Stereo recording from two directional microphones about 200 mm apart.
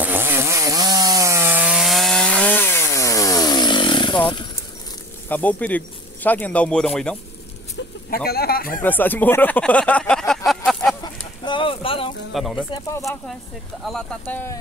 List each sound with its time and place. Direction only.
0.0 s wood: 10° right (ahead or behind); by 4.5 s 25° left (ahead or behind)
5.3 s speech: 10° left (ahead or behind)
8.3 s speech: 50° left (ahead or behind)
8.8 s speech: 10° left (ahead or behind)
11.0 s chicken: 25° left (ahead or behind)
12.4 s speech: centre (ahead or behind)
13.8 s speech: 5° left (ahead or behind)